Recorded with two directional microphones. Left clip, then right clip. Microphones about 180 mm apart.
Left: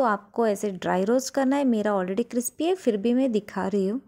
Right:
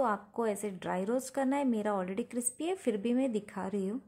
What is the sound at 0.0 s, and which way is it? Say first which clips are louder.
Speech: left 8 dB; 35° left (ahead or behind).